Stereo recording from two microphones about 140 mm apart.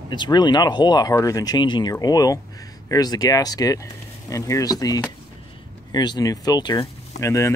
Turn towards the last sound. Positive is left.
turn(degrees=20)  # may be behind; listen again after turning